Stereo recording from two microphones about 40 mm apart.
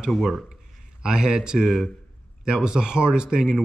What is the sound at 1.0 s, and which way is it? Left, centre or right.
Speech, centre.